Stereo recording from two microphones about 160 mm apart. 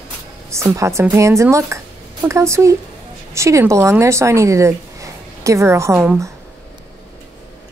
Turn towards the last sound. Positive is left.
turn(degrees=-15)  # may be behind; listen again after turning